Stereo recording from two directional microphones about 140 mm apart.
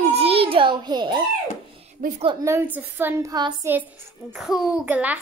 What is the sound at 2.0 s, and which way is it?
Speech, 65° right (ahead or behind).